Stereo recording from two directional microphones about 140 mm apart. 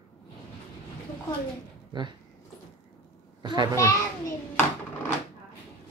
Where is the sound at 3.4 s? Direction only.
30° right (ahead or behind).